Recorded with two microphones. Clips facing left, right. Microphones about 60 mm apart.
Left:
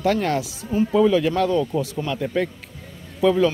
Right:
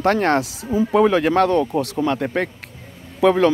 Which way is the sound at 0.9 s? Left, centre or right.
Right.